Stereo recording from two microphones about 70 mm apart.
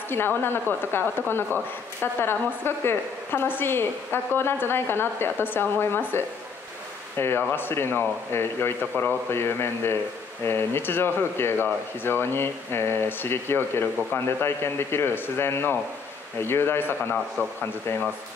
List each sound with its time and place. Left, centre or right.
0.1 s a man's voice: left